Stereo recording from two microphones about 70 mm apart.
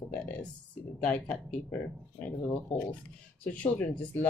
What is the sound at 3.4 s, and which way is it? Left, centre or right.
Speech, left.